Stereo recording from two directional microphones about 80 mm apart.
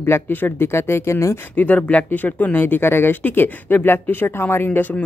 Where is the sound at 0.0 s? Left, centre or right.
Left.